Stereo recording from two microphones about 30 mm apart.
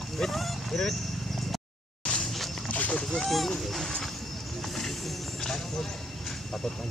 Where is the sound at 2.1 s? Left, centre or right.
Left.